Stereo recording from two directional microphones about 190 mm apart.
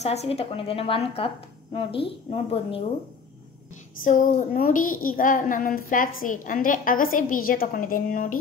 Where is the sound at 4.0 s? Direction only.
45° left (ahead or behind).